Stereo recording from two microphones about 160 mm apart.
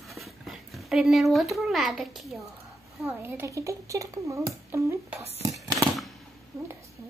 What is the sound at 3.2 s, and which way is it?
Speech, 15° right (ahead or behind).